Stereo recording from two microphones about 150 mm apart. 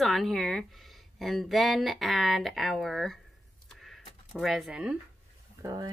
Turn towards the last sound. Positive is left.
turn(degrees=-25)  # may be behind; listen again after turning